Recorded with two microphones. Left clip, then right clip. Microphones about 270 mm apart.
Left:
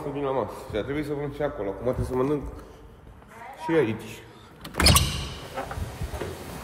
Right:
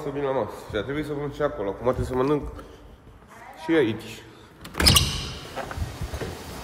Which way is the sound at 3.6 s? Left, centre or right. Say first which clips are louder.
Right 2 dB; centre.